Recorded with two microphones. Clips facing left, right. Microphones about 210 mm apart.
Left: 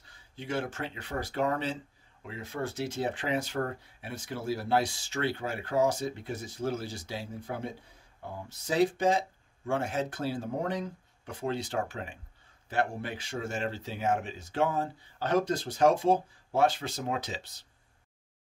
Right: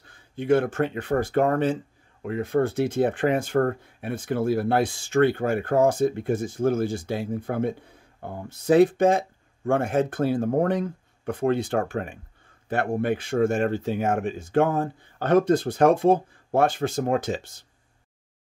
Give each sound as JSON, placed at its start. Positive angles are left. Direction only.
{"t": 0.0, "sound": "speech", "side_deg": -55}